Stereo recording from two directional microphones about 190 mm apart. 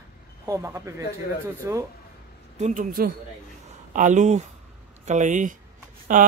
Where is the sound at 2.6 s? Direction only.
45° right (ahead or behind).